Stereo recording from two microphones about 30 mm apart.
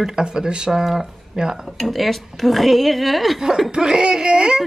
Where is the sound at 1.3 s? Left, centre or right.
Right.